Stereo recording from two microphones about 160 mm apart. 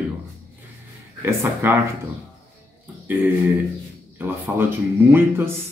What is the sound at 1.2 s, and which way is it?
Speech, 15° right (ahead or behind).